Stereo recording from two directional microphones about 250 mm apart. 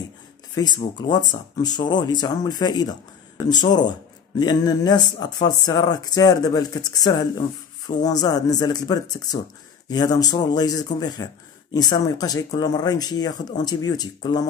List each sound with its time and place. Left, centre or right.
0.6 s speech: centre